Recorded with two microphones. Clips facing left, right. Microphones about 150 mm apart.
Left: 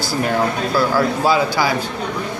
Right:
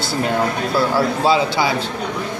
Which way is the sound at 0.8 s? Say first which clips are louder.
Even; 25° right (ahead or behind).